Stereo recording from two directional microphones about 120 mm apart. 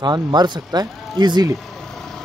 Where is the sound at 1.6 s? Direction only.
5° left (ahead or behind).